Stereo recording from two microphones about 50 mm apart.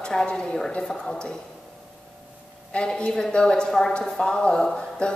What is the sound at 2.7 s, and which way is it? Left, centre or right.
A woman's voice, centre.